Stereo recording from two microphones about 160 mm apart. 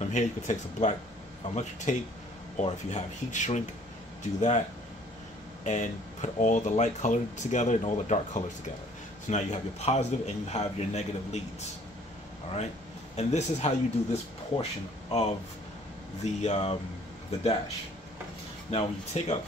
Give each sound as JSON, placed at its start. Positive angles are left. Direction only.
{"t": 0.1, "sound": "speech", "side_deg": 50}
{"t": 13.1, "sound": "speech", "side_deg": 40}
{"t": 18.7, "sound": "speech", "side_deg": 40}